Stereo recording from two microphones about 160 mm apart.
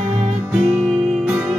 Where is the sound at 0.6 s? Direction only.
10° right (ahead or behind).